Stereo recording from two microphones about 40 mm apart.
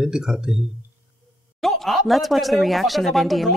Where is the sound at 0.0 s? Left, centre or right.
Centre.